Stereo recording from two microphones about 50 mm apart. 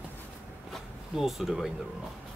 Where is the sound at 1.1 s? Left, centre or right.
Centre.